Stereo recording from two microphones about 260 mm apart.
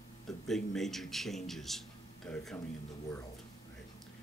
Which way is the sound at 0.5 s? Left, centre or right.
Centre.